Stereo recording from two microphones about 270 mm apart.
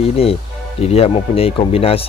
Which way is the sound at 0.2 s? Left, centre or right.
Left.